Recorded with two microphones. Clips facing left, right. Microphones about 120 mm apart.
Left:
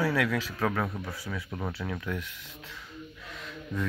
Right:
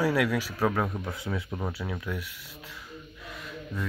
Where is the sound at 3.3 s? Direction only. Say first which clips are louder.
Left 1 dB; 10° right (ahead or behind).